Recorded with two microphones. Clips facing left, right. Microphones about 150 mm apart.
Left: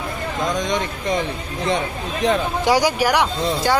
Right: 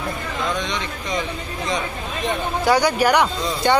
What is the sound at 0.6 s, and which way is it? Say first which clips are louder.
Speech: left 4 dB; 45° left (ahead or behind).